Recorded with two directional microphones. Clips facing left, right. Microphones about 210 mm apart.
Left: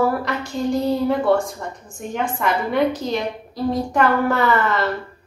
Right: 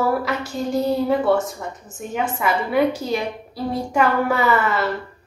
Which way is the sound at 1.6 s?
5° right (ahead or behind).